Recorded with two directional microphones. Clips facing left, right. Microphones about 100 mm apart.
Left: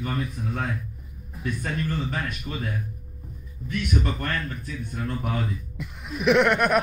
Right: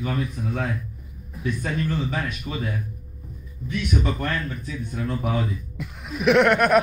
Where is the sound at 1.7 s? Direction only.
5° right (ahead or behind).